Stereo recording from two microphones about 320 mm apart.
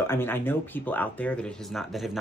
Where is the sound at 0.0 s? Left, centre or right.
Centre.